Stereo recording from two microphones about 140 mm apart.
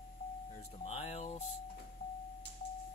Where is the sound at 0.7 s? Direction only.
45° left (ahead or behind).